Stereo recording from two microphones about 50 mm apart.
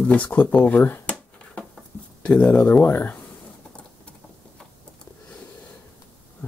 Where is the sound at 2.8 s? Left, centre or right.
Left.